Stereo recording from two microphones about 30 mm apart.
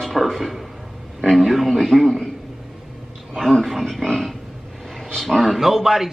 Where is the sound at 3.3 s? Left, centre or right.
Centre.